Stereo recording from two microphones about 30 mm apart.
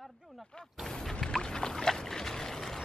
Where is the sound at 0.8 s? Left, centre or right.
Centre.